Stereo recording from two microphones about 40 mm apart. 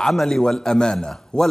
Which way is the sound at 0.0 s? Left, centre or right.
Centre.